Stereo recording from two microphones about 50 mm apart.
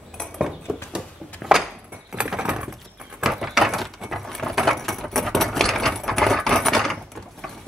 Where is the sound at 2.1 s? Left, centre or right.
Centre.